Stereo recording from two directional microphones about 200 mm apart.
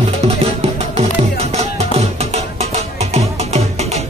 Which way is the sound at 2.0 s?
30° right (ahead or behind).